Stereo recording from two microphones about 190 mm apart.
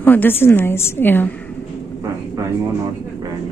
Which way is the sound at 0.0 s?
10° left (ahead or behind).